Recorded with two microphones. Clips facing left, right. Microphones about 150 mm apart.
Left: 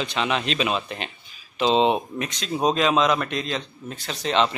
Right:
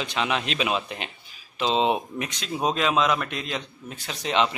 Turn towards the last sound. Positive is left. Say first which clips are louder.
# left 2 dB
turn(degrees=-10)  # may be behind; listen again after turning